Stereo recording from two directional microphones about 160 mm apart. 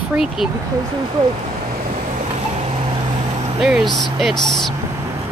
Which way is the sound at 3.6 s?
Centre (ahead or behind).